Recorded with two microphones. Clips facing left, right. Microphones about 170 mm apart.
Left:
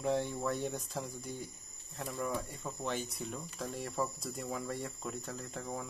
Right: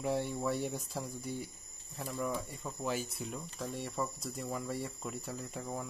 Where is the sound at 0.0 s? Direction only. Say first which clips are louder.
Left 1 dB; 5° right (ahead or behind).